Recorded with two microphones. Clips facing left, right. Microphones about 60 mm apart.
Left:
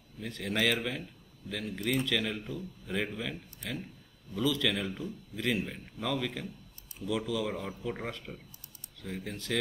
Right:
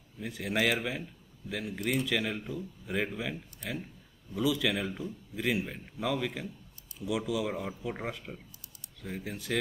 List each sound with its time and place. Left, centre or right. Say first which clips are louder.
0.2 s a man's voice: right 1 dB; centre